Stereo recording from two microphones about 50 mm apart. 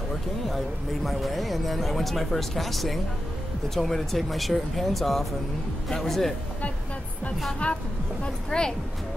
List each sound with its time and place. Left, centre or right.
1.0 s speech: centre
7.6 s speech: left
8.5 s speech: centre